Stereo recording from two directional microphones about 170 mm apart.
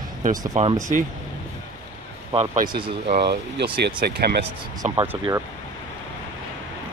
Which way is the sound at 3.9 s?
60° right (ahead or behind).